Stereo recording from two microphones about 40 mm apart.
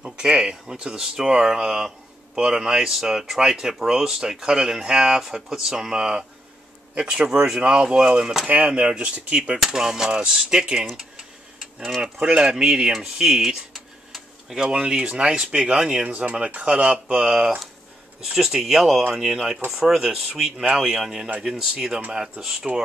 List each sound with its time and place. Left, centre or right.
0.0 s speech: right
8.5 s speech: right
9.6 s speech: centre
12.0 s speech: right
19.7 s speech: centre